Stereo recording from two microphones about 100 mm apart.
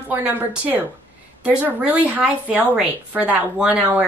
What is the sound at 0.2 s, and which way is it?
A woman's voice, 15° right (ahead or behind).